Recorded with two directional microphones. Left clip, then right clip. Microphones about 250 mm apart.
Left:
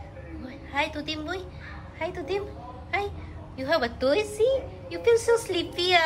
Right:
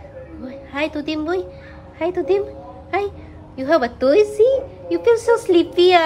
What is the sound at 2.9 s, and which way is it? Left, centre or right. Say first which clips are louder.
A woman's voice: right 7 dB; centre.